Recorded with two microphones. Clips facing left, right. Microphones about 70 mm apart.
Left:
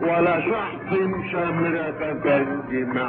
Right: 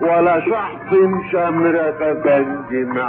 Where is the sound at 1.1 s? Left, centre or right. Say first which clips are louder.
Right 7 dB; right.